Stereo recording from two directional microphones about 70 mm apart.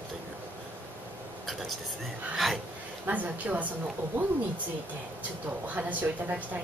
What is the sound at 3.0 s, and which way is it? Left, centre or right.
Speech, right.